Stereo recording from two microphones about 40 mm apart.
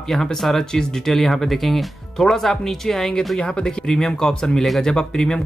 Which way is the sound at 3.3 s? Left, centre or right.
Left.